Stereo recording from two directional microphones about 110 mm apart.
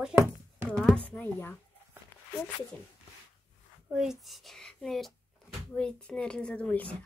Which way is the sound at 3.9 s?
5° right (ahead or behind).